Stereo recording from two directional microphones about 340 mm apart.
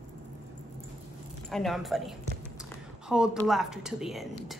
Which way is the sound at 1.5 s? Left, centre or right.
Centre.